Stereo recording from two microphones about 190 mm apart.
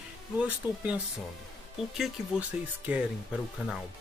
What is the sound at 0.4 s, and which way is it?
Speech, 5° right (ahead or behind).